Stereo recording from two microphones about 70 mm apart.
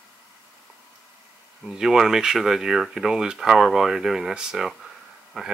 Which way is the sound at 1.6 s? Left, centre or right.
Centre.